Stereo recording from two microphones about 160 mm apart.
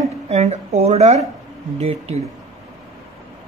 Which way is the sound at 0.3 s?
45° right (ahead or behind).